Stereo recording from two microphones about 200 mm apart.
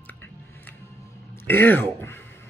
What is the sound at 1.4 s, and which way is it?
Speech, 10° left (ahead or behind).